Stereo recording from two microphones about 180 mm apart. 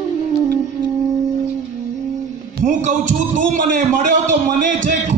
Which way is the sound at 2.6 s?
40° right (ahead or behind).